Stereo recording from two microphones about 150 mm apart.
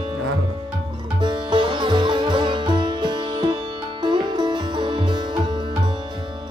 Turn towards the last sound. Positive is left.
turn(degrees=-30)  # may be behind; listen again after turning